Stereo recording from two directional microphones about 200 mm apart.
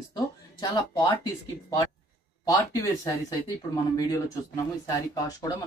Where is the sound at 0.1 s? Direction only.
20° left (ahead or behind).